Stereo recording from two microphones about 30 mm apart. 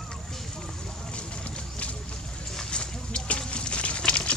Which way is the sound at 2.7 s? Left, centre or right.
Left.